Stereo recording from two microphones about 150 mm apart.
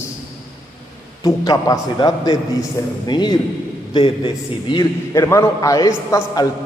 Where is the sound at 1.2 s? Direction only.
25° left (ahead or behind).